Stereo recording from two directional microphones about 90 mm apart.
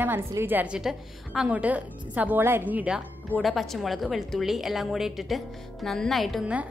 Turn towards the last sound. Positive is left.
turn(degrees=0)  # may be behind; listen again after turning